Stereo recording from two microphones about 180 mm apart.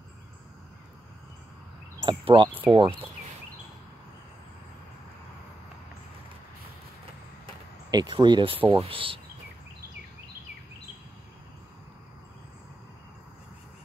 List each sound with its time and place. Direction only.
2.0 s speech: 25° right (ahead or behind)
7.9 s speech: 25° right (ahead or behind)